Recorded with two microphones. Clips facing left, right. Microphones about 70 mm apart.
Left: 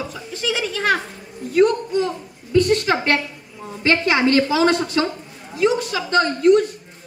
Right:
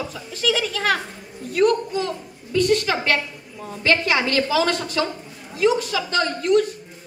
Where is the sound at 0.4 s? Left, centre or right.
Left.